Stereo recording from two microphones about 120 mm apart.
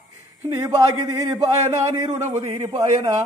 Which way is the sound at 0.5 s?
25° right (ahead or behind).